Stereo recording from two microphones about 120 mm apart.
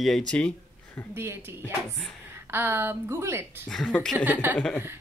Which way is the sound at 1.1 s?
20° right (ahead or behind).